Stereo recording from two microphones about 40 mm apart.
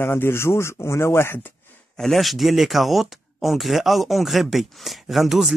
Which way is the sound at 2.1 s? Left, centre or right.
Centre.